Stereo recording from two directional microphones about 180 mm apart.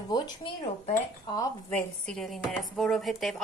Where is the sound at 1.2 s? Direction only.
20° left (ahead or behind).